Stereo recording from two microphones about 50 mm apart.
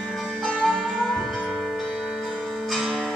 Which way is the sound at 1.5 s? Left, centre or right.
Centre.